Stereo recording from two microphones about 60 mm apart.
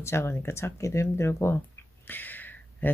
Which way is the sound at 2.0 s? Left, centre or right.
Left.